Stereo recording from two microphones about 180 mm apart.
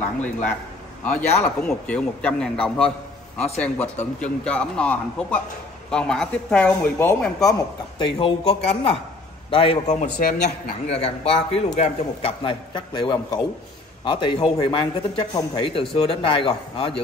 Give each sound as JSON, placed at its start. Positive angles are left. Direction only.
{"t": 1.0, "sound": "a man's voice", "side_deg": 10}
{"t": 8.2, "sound": "a man's voice", "side_deg": 30}